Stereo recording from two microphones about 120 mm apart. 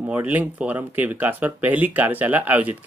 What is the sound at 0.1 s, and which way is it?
Speech, 15° right (ahead or behind).